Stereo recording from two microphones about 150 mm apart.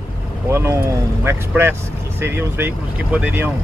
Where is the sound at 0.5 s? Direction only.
15° right (ahead or behind).